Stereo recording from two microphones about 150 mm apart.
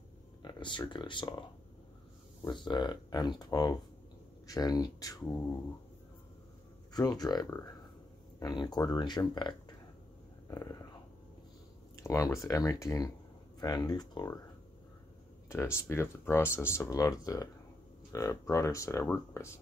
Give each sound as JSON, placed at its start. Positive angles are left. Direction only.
{"t": 0.4, "sound": "speech", "side_deg": 30}
{"t": 2.4, "sound": "speech", "side_deg": 30}
{"t": 6.9, "sound": "speech", "side_deg": 25}
{"t": 10.5, "sound": "a sound", "side_deg": 25}
{"t": 12.0, "sound": "speech", "side_deg": 20}
{"t": 15.4, "sound": "speech", "side_deg": 15}